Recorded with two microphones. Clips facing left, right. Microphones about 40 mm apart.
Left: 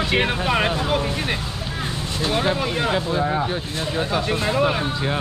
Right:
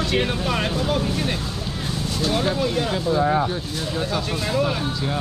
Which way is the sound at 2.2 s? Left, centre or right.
Left.